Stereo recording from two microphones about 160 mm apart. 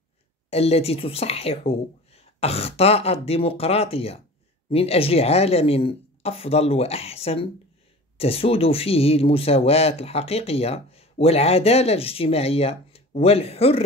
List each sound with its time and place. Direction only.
0.5 s speech: 40° left (ahead or behind)